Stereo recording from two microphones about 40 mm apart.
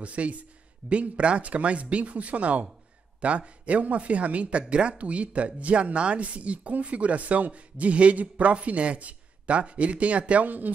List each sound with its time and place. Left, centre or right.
0.0 s speech: right